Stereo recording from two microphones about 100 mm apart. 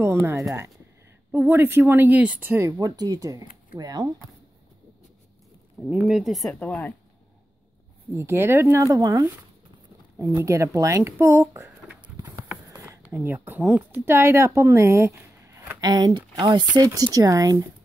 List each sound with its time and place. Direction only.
0.0 s speech: 25° right (ahead or behind)
2.6 s speech: 40° right (ahead or behind)
5.8 s speech: 10° right (ahead or behind)
8.1 s speech: 25° right (ahead or behind)
8.8 s speech: 35° right (ahead or behind)
12.0 s clip-clop: 35° right (ahead or behind)
12.7 s a sound: 30° right (ahead or behind)
13.0 s speech: 20° right (ahead or behind)
15.8 s speech: 40° right (ahead or behind)